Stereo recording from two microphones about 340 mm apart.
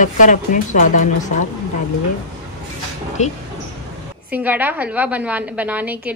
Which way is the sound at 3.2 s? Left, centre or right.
Centre.